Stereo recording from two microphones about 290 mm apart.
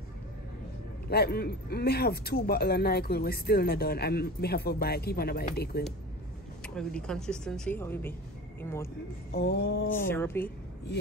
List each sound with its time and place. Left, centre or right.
1.0 s speech: left
6.6 s speech: centre
9.3 s speech: left
9.9 s a woman's voice: centre